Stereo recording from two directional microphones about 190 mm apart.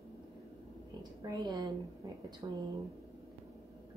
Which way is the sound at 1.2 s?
20° right (ahead or behind).